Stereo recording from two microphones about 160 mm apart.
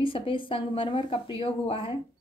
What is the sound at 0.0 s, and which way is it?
A woman's voice, 35° left (ahead or behind).